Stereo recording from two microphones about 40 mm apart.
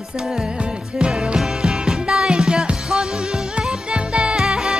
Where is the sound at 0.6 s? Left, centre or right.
Right.